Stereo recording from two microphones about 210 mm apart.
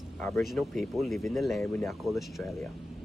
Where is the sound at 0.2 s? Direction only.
Centre (ahead or behind).